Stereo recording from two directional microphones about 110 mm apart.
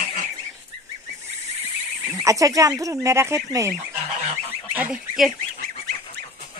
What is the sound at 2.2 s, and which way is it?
Speech, 30° right (ahead or behind).